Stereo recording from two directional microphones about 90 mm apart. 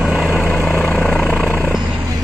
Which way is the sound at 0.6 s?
20° left (ahead or behind).